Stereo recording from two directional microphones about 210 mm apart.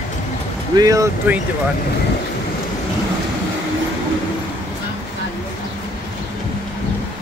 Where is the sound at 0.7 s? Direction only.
15° right (ahead or behind).